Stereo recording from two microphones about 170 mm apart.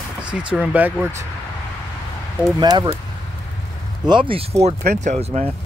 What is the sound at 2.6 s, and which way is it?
Speech, 25° right (ahead or behind).